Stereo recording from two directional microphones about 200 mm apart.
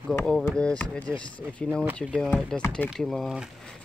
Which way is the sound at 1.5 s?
5° left (ahead or behind).